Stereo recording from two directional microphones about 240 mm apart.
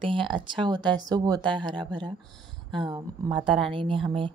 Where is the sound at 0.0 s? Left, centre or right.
Right.